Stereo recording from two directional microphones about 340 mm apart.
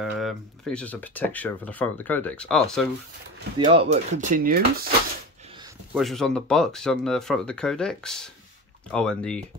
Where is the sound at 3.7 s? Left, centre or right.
Centre.